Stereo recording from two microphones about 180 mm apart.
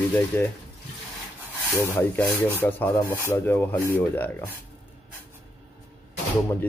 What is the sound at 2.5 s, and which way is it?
Speech, 10° left (ahead or behind).